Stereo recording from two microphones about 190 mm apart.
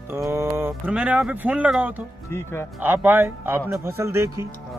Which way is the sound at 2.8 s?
10° right (ahead or behind).